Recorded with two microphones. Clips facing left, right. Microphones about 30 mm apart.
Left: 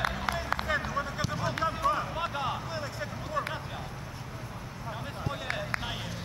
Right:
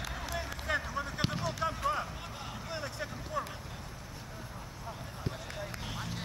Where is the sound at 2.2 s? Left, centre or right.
Left.